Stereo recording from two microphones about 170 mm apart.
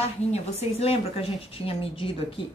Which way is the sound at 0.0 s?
35° left (ahead or behind).